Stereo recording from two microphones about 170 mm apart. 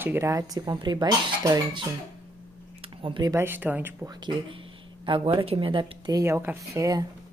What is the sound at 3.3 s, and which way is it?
Speech, 10° right (ahead or behind).